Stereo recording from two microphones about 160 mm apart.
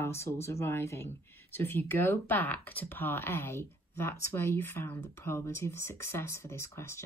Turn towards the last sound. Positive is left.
turn(degrees=15)  # may be behind; listen again after turning